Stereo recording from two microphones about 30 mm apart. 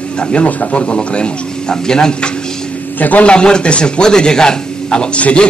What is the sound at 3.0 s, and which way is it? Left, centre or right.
Speech, left.